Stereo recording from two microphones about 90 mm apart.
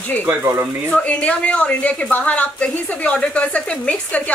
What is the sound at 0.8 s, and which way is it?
Speech, 15° left (ahead or behind).